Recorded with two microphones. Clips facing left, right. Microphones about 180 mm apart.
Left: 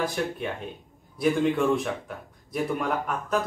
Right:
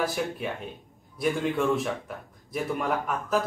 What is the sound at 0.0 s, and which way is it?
A man's voice, 5° right (ahead or behind).